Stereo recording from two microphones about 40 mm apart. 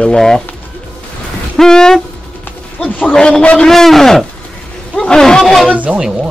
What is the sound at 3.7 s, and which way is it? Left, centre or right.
Speech, centre.